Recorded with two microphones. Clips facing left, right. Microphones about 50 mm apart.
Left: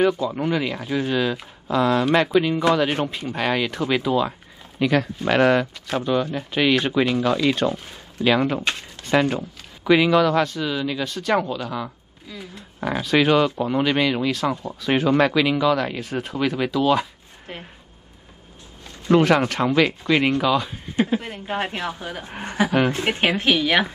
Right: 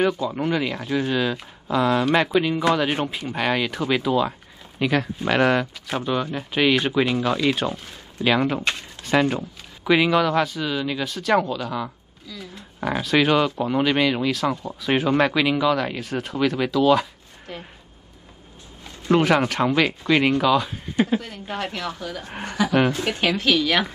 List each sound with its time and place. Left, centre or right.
0.0 s speech: centre
12.3 s a woman's voice: left
12.8 s speech: centre
17.5 s speech: left
19.0 s speech: centre
21.2 s a woman's voice: left